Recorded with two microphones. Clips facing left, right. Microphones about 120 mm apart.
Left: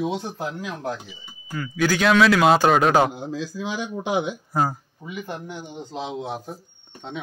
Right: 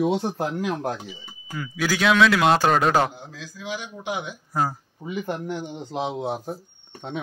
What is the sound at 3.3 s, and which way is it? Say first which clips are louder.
Speech: left 5 dB; 30° left (ahead or behind).